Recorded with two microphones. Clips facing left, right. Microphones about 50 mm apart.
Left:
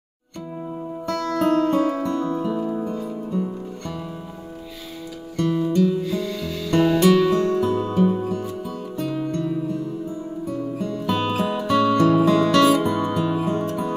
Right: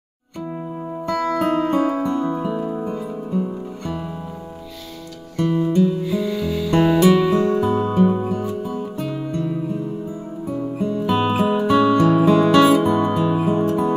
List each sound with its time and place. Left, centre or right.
1.0 s music: centre
5.4 s music: centre